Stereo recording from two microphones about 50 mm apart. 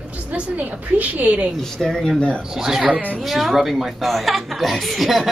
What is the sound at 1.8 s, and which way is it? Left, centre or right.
Speech, centre.